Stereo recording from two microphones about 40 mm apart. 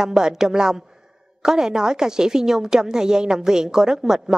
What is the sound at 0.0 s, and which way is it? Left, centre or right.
A woman's voice, centre.